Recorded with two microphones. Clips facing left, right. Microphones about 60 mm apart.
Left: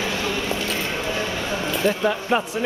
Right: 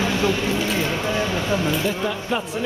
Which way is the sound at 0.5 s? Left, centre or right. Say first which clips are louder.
Right 3 dB; centre.